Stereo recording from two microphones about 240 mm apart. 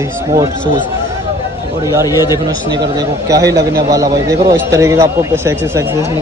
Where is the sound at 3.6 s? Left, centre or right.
Centre.